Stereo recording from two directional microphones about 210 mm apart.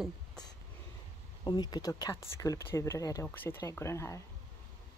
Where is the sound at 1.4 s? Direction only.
20° left (ahead or behind).